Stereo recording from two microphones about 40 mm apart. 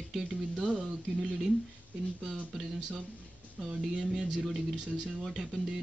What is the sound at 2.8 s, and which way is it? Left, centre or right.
Speech, centre.